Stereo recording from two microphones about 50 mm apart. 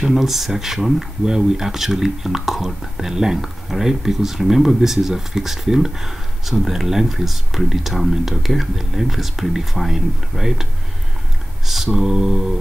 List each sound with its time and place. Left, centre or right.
0.0 s speech: centre
11.6 s mantra: centre